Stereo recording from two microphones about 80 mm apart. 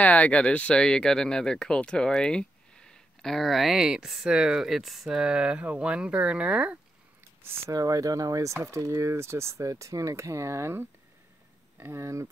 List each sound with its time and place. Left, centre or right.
0.0 s speech: centre
7.7 s speech: right